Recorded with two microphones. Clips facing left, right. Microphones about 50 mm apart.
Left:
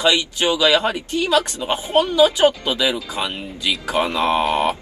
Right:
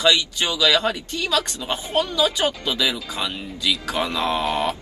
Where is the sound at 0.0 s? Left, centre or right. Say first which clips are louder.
Left 2 dB; left.